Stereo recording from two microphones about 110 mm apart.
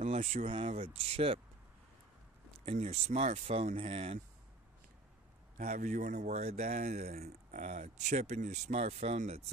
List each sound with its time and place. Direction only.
0.1 s speech: 90° right
0.5 s speech: 60° right (ahead or behind)
2.6 s speech: 80° right; by 4.2 s 65° right (ahead or behind)
5.7 s speech: 90° right